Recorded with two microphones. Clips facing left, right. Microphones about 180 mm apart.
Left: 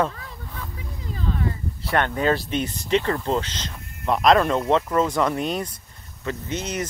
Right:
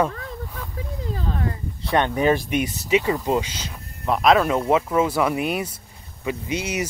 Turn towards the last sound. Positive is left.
turn(degrees=-10)  # may be behind; listen again after turning